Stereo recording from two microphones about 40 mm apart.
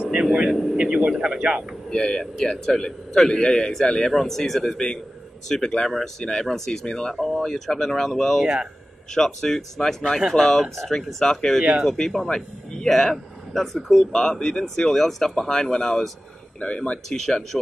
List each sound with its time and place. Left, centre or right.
0.0 s vehicle: right
0.5 s speech: centre
1.2 s a man's voice: right
1.9 s speech: left
2.3 s speech: centre
4.1 s speech: centre
4.7 s speech: left
6.9 s speech: left
7.2 s speech: centre
14.1 s speech: centre
16.5 s speech: left
17.1 s speech: centre